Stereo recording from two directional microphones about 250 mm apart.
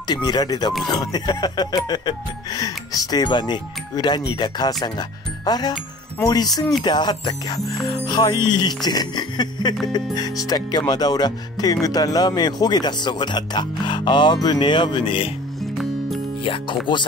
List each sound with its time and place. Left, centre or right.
0.1 s speech: centre
16.4 s speech: left